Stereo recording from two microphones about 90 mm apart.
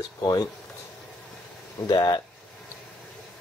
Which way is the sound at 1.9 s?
50° left (ahead or behind).